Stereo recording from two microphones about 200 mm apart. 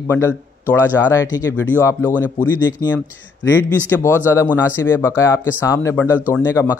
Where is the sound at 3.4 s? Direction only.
10° left (ahead or behind).